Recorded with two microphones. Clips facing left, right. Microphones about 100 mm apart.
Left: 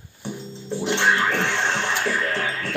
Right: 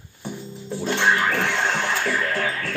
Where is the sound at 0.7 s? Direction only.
20° left (ahead or behind).